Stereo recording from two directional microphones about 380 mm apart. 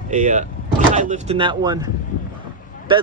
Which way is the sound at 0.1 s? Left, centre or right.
Centre.